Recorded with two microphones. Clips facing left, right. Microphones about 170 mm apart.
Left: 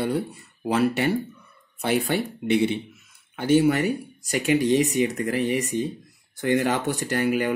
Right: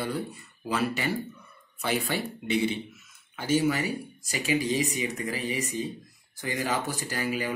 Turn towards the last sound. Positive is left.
turn(degrees=60)  # may be behind; listen again after turning